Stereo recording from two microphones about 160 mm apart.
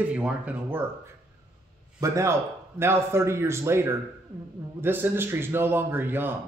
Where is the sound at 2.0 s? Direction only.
20° right (ahead or behind).